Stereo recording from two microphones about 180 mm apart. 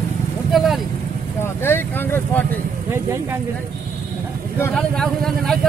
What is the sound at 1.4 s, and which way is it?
Vehicle, 10° left (ahead or behind).